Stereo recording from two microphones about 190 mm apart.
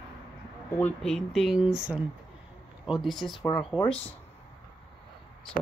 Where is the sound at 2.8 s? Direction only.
Centre (ahead or behind).